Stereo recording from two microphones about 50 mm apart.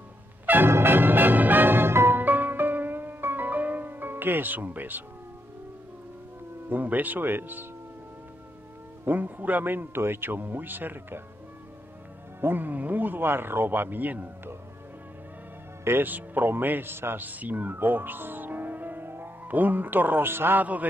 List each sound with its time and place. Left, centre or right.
0.7 s music: right
2.2 s music: right
6.7 s speech: right
9.0 s speech: right
12.4 s speech: right
16.0 s speech: right
17.2 s speech: right